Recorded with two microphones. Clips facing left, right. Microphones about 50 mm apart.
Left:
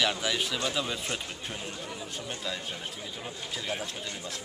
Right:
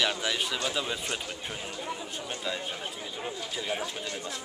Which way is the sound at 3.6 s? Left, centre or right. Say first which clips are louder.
Right 2 dB; centre.